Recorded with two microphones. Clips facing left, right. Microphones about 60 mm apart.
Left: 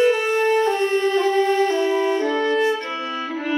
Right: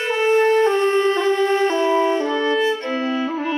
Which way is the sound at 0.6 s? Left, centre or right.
Right.